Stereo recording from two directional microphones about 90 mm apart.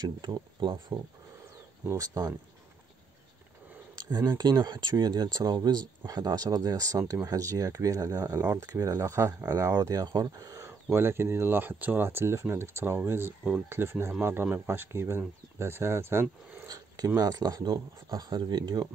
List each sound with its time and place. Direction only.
0.0 s speech: 55° right (ahead or behind)
1.9 s speech: 40° right (ahead or behind)
3.9 s speech: 45° right (ahead or behind)
10.9 s speech: 25° right (ahead or behind)
16.6 s a sound: 45° right (ahead or behind)
17.2 s speech: 45° right (ahead or behind)